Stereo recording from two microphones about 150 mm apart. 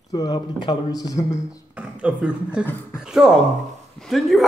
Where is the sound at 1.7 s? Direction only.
10° right (ahead or behind).